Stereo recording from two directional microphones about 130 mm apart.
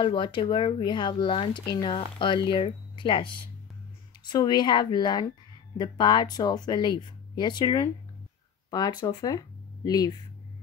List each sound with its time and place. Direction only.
0.0 s speech: 40° left (ahead or behind)